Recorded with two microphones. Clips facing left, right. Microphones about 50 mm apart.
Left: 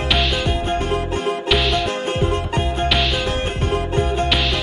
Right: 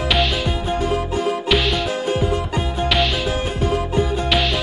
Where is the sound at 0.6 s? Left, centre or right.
Left.